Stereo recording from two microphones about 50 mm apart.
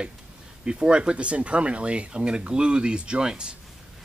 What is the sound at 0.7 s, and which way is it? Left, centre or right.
Speech, centre.